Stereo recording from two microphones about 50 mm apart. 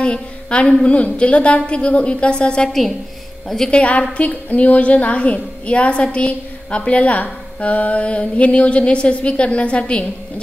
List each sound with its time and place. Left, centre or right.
0.0 s a sound: left
0.8 s a woman's voice: left
3.4 s speech: centre
3.7 s a woman's voice: left